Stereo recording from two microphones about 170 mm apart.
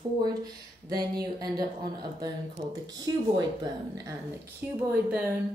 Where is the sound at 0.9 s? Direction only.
25° right (ahead or behind).